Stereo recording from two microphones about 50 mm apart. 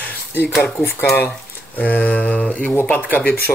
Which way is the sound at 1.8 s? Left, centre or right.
Left.